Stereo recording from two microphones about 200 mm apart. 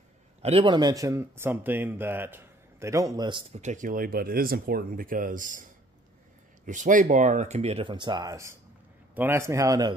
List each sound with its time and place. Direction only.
0.4 s speech: 30° right (ahead or behind)
3.6 s speech: 40° right (ahead or behind); by 9.9 s 20° right (ahead or behind)